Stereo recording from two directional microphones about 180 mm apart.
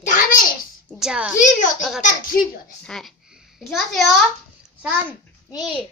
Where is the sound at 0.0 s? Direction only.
45° left (ahead or behind).